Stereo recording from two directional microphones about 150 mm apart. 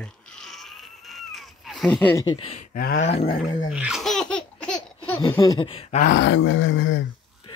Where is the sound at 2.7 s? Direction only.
70° left (ahead or behind).